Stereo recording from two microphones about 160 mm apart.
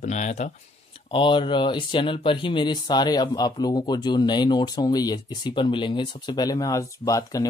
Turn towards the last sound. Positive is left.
turn(degrees=20)  # may be behind; listen again after turning